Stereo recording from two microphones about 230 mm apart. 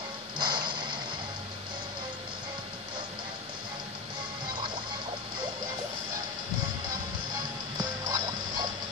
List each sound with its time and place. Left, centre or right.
0.4 s music: centre
7.8 s music: centre